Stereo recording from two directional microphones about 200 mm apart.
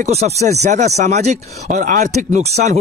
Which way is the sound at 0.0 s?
30° right (ahead or behind).